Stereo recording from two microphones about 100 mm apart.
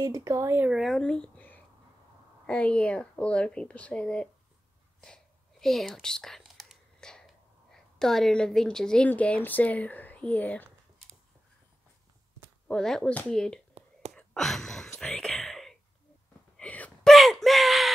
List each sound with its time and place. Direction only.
0.0 s speech: 30° right (ahead or behind)
0.7 s speech: centre (ahead or behind)
5.0 s whispering: 5° left (ahead or behind)
12.6 s speech: 5° left (ahead or behind)
14.1 s a sound: 5° left (ahead or behind)
16.5 s wail: 15° left (ahead or behind)
17.0 s a sound: centre (ahead or behind)